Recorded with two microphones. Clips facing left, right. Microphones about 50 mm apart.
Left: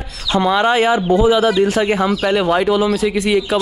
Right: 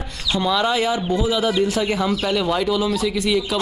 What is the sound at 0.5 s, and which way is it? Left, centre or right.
Speech, left.